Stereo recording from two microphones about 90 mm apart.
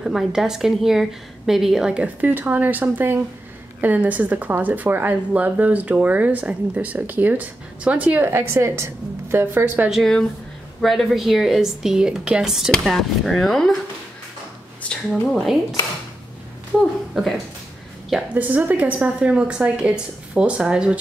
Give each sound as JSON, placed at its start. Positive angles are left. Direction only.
{"t": 0.0, "sound": "a woman's voice", "side_deg": -5}
{"t": 2.2, "sound": "a woman's voice", "side_deg": -20}
{"t": 8.3, "sound": "a woman's voice", "side_deg": -30}
{"t": 9.8, "sound": "a woman's voice", "side_deg": 5}
{"t": 14.8, "sound": "a sound", "side_deg": 15}
{"t": 15.2, "sound": "a woman's voice", "side_deg": 0}
{"t": 17.1, "sound": "a woman's voice", "side_deg": 0}
{"t": 18.3, "sound": "speech", "side_deg": -20}